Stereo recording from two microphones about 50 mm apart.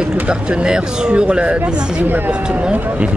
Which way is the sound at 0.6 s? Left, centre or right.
Centre.